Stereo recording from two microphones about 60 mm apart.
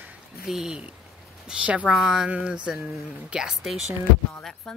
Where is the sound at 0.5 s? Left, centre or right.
Centre.